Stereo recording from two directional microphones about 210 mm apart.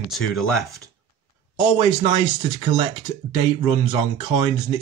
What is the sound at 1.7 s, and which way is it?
Speech, 25° right (ahead or behind).